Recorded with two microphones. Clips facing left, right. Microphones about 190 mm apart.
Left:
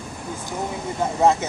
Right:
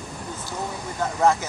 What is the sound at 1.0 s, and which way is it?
Speech, 20° left (ahead or behind).